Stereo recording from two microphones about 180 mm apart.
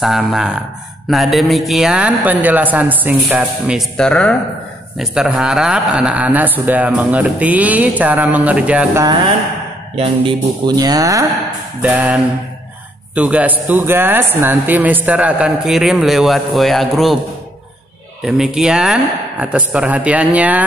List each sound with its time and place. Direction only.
0.0 s speech: centre (ahead or behind)
3.9 s speech: 5° left (ahead or behind)
9.9 s speech: 30° right (ahead or behind)
11.8 s speech: 10° right (ahead or behind)
18.2 s speech: 5° right (ahead or behind)